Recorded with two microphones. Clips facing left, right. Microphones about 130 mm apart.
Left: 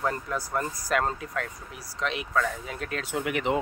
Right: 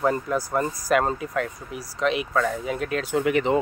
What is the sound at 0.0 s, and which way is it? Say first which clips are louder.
Speech: right 6 dB; 5° right (ahead or behind).